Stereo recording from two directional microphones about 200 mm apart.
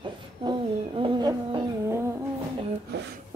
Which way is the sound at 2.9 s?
55° right (ahead or behind).